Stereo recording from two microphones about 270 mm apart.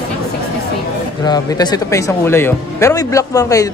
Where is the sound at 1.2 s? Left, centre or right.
Centre.